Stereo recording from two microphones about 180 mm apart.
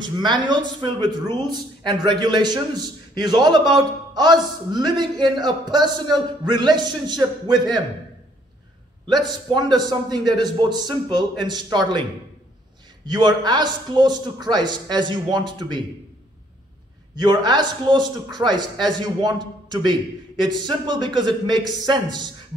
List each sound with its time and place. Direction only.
0.0 s a man's voice: 25° right (ahead or behind)
9.0 s a man's voice: 25° right (ahead or behind)
13.0 s a man's voice: 25° right (ahead or behind)
17.1 s a man's voice: 25° right (ahead or behind)